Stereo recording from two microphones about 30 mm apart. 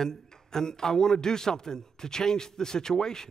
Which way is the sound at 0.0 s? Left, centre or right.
Centre.